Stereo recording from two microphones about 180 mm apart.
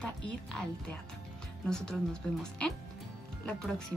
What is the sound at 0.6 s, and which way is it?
A woman's voice, 5° left (ahead or behind).